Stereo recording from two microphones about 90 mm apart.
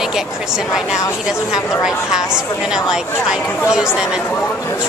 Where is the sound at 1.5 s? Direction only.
35° left (ahead or behind).